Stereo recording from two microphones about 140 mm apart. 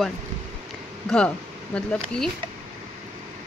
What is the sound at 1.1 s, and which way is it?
Speech, 5° left (ahead or behind).